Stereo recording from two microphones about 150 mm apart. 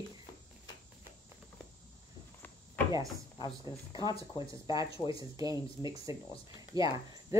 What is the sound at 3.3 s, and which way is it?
Speech, 30° left (ahead or behind).